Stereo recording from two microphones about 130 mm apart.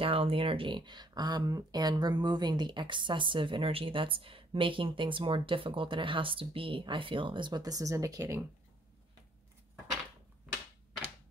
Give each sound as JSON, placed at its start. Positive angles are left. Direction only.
{"t": 0.0, "sound": "speech", "side_deg": -45}